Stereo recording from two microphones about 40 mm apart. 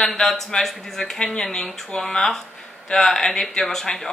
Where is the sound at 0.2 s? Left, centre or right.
Centre.